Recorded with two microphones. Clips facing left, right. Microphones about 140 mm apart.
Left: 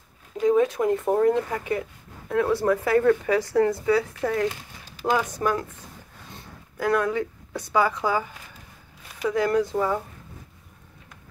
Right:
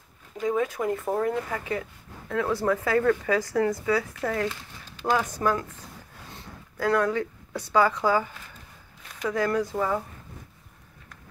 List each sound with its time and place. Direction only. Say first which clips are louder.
0.4 s speech: left 6 dB; 20° left (ahead or behind)
6.8 s a woman's voice: left 1 dB; 15° left (ahead or behind)
9.3 s speech: left 3 dB; 20° left (ahead or behind)